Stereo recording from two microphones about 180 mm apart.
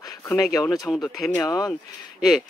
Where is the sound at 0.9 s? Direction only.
Centre (ahead or behind).